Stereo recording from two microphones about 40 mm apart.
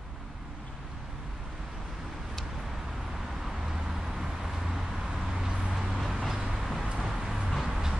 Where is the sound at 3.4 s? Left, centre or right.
Centre.